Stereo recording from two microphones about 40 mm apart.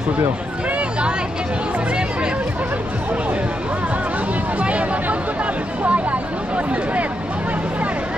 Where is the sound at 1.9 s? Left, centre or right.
Right.